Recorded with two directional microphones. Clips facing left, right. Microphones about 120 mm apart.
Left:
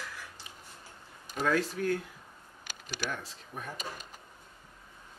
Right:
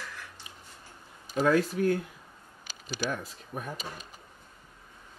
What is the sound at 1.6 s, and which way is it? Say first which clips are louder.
Speech: right 4 dB; 45° right (ahead or behind).